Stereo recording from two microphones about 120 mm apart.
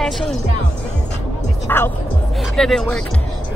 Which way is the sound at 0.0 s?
5° left (ahead or behind).